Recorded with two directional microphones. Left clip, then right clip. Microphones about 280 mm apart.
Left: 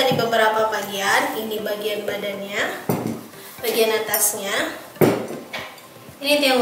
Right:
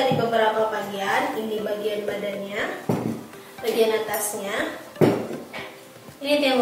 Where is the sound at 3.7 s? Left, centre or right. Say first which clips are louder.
Left 2 dB; centre.